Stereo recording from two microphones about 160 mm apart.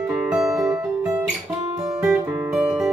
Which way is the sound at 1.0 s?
15° right (ahead or behind).